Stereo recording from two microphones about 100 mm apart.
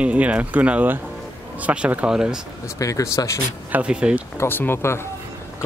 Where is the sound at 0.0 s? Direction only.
10° right (ahead or behind).